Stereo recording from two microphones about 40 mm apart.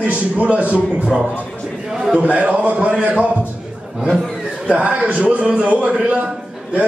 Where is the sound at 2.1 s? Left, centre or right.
Right.